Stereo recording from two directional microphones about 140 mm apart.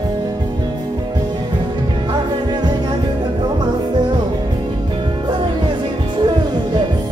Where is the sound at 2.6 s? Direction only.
35° right (ahead or behind).